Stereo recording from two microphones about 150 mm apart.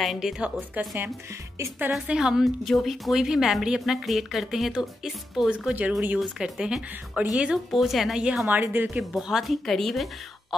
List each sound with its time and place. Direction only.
0.0 s a woman's voice: centre (ahead or behind)
9.1 s a woman's voice: centre (ahead or behind)